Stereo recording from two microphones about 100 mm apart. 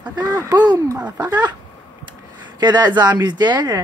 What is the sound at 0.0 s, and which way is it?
Speech, 45° right (ahead or behind).